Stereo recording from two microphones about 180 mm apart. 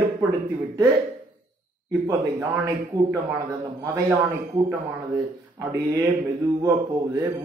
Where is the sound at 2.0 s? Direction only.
15° right (ahead or behind).